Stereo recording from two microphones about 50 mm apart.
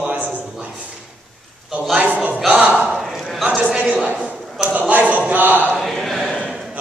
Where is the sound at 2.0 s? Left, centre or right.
Right.